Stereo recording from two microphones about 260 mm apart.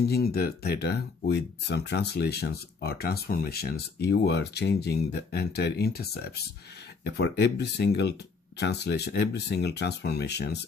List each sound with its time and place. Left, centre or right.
0.0 s speech: left